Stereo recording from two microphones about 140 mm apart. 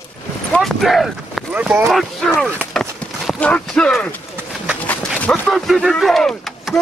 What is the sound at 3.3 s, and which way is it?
Speech, 5° left (ahead or behind).